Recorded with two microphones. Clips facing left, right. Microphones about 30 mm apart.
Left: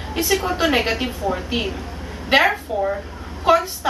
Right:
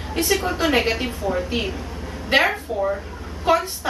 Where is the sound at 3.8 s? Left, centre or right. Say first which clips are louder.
Left 3 dB; centre.